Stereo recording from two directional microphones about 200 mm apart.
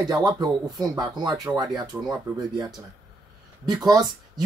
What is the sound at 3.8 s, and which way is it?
Speech, 20° right (ahead or behind).